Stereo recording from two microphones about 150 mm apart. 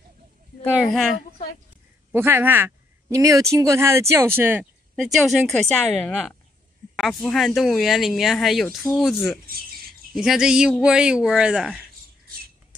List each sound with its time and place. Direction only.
0.8 s speech: centre (ahead or behind)
2.1 s speech: 15° right (ahead or behind)
5.0 s speech: centre (ahead or behind)